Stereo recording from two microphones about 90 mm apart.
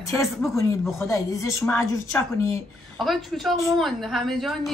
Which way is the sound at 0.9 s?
35° left (ahead or behind).